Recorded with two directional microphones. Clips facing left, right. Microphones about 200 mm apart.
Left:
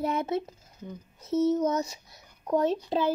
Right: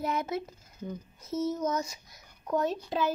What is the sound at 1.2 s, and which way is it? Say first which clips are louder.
Speech: left 7 dB; 65° left (ahead or behind).